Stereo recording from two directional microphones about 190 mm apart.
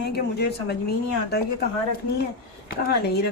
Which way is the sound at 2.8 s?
60° left (ahead or behind).